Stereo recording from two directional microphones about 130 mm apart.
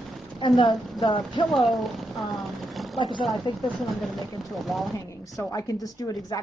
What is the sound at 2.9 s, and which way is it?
Speech, 40° left (ahead or behind).